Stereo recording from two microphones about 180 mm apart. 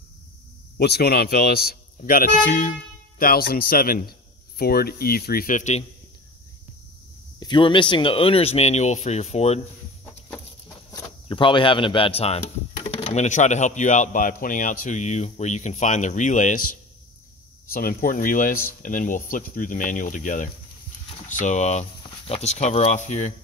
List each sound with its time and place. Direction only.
0.7 s speech: 65° left (ahead or behind)
2.0 s speech: 50° left (ahead or behind)
7.3 s speech: 25° left (ahead or behind)
10.9 s speech: 20° left (ahead or behind); by 16.6 s 45° left (ahead or behind)
17.6 s speech: 50° left (ahead or behind)